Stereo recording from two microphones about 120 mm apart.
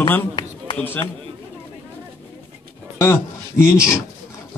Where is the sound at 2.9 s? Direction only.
20° left (ahead or behind).